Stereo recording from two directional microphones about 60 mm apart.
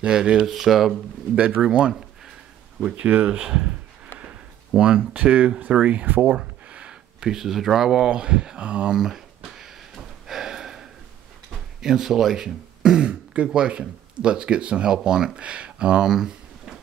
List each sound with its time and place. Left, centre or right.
0.0 s speech: centre
1.3 s speech: centre
4.7 s speech: centre
8.9 s speech: centre
9.6 s a sound: centre
9.9 s snort: centre
11.8 s speech: centre